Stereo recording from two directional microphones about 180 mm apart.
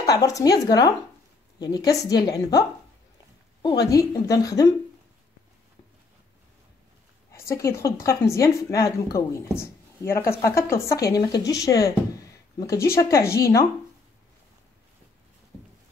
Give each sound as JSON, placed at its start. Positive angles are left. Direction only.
{"t": 0.0, "sound": "speech", "side_deg": 20}
{"t": 3.9, "sound": "speech", "side_deg": 20}
{"t": 7.3, "sound": "speech", "side_deg": 15}